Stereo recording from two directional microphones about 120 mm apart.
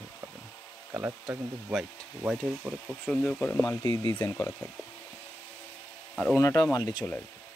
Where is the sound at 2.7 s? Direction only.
Centre (ahead or behind); by 4.6 s 20° left (ahead or behind).